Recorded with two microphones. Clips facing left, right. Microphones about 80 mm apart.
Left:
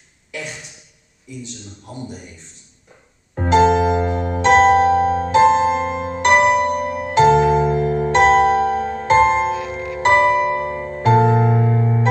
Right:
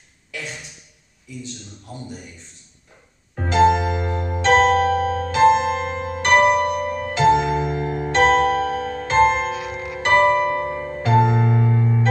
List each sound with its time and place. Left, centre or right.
0.3 s music: centre
3.3 s music: left